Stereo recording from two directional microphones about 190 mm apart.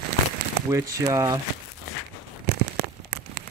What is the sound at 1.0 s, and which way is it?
Speech, 15° right (ahead or behind).